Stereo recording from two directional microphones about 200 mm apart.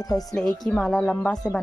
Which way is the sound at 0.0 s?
20° left (ahead or behind).